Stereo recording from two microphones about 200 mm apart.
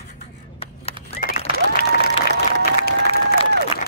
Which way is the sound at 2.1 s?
30° left (ahead or behind).